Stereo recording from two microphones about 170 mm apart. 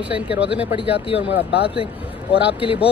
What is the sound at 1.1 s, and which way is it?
Speech, 90° left.